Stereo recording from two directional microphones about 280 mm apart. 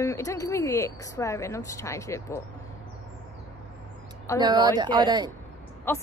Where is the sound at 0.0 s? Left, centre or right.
Centre.